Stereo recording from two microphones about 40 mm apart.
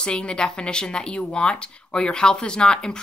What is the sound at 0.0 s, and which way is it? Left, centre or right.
Speech, left.